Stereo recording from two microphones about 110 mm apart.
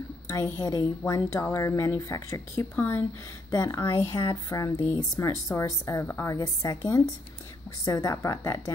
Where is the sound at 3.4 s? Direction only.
30° left (ahead or behind).